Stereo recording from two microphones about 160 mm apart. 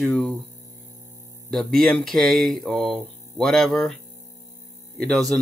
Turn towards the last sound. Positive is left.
turn(degrees=5)  # may be behind; listen again after turning